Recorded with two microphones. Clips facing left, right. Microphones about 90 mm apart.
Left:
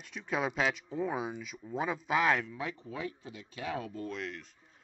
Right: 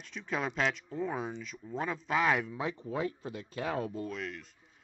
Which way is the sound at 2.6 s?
30° right (ahead or behind).